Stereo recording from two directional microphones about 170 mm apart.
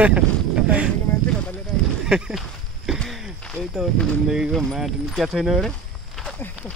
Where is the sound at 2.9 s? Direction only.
Centre (ahead or behind).